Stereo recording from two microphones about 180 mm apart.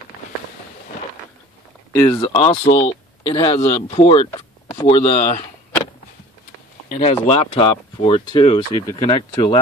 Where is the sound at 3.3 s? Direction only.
20° left (ahead or behind).